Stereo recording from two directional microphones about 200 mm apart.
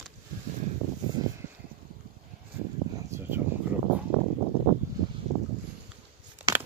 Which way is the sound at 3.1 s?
10° right (ahead or behind).